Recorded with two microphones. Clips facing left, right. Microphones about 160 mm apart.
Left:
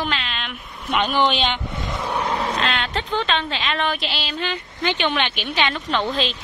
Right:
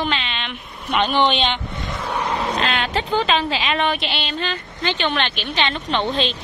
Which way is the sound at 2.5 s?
5° right (ahead or behind).